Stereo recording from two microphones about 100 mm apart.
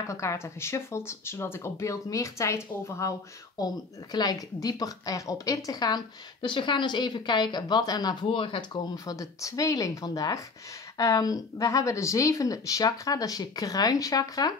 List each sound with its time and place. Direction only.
0.0 s speech: 30° left (ahead or behind); by 8.6 s 60° left (ahead or behind)
8.9 s speech: 35° left (ahead or behind)